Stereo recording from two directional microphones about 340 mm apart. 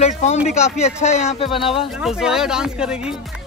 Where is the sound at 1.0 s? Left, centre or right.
Left.